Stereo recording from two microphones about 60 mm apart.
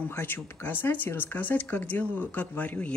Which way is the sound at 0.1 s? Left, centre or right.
Left.